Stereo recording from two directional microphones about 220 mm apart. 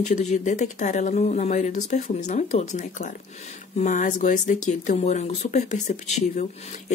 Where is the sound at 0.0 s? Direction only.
30° left (ahead or behind).